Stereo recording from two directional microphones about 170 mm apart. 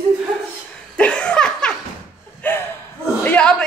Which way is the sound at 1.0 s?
5° left (ahead or behind).